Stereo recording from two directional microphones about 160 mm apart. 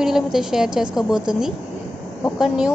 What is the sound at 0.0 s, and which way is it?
A woman's voice, 5° right (ahead or behind).